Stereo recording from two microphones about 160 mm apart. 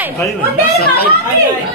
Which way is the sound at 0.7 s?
80° left.